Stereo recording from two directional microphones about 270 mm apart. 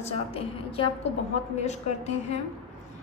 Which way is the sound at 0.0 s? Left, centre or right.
Left.